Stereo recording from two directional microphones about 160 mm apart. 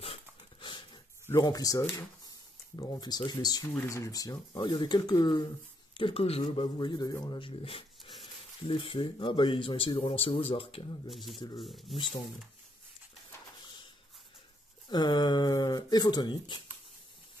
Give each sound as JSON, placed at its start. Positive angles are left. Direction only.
{"t": 0.0, "sound": "dog", "side_deg": 35}
{"t": 1.2, "sound": "speech", "side_deg": 20}
{"t": 11.1, "sound": "speech", "side_deg": 0}
{"t": 14.9, "sound": "speech", "side_deg": 25}